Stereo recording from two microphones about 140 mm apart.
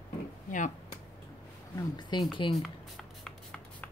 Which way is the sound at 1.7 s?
30° left (ahead or behind).